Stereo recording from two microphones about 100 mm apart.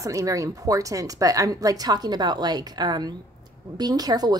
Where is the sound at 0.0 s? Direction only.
35° right (ahead or behind).